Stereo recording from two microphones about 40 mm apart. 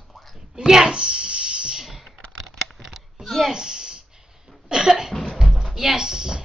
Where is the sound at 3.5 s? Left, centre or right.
Centre.